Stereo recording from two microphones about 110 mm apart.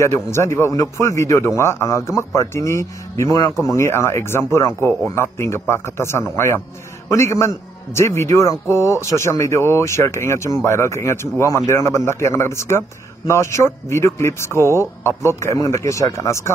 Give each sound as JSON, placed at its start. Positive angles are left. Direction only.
{"t": 0.0, "sound": "a man's voice", "side_deg": 25}